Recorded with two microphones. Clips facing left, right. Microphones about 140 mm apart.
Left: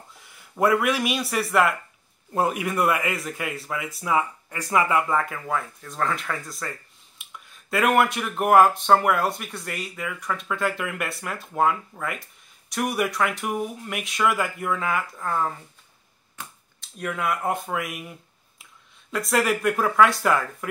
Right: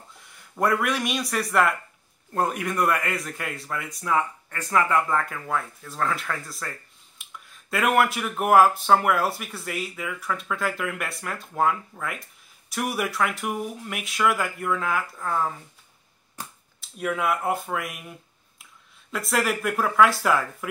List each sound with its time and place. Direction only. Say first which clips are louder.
0.1 s speech: left 1 dB; centre (ahead or behind)
16.4 s a sound: right 1 dB; 35° right (ahead or behind)
16.8 s speech: right 2 dB; 5° right (ahead or behind)
19.1 s speech: left 2 dB; centre (ahead or behind)